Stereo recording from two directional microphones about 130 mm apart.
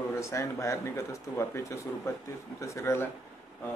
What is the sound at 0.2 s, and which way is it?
Speech, 25° left (ahead or behind).